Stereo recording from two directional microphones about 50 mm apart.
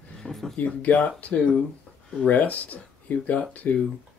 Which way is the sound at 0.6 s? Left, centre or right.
Left.